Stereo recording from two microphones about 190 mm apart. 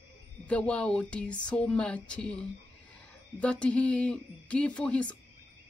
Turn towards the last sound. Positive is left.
turn(degrees=5)  # may be behind; listen again after turning